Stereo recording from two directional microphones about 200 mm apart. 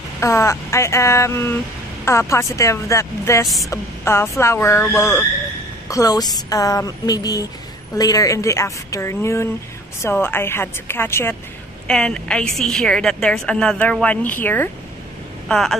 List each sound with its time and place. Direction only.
0.2 s a woman's voice: 15° left (ahead or behind)